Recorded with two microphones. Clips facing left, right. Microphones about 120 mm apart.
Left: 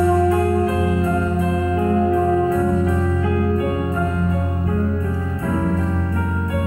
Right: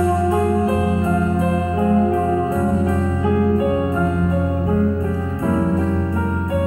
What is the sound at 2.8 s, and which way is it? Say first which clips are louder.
Music: right 1 dB; 30° right (ahead or behind).